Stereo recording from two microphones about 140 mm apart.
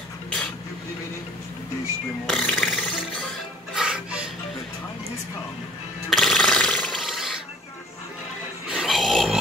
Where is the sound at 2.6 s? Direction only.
Centre (ahead or behind).